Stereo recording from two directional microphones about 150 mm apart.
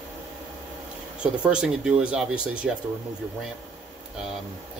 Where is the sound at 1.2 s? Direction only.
5° right (ahead or behind).